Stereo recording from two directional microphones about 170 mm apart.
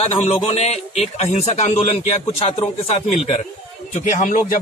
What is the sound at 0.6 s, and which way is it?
Speech, 40° left (ahead or behind).